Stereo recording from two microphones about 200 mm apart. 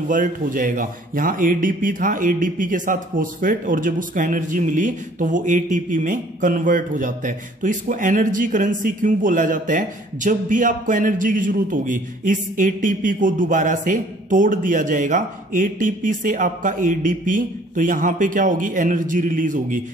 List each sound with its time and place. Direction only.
0.1 s a man's voice: 40° right (ahead or behind)